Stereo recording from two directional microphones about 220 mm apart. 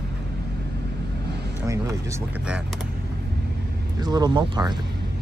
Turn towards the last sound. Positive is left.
turn(degrees=-20)  # may be behind; listen again after turning